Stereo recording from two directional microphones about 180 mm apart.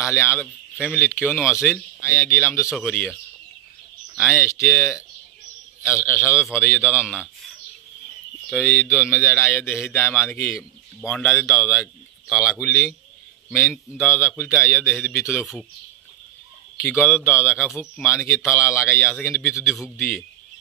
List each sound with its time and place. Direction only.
0.1 s a man's voice: 15° left (ahead or behind)
4.2 s a man's voice: 15° left (ahead or behind)
8.5 s a man's voice: 10° left (ahead or behind)
14.0 s a man's voice: 15° left (ahead or behind)
17.0 s a man's voice: 10° left (ahead or behind)